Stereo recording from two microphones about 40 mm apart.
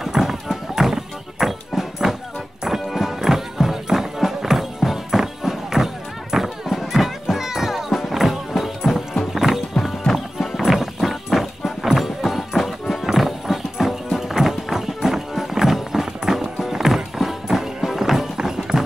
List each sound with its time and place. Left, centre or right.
0.0 s clip-clop: centre
2.6 s music: centre
11.0 s music: centre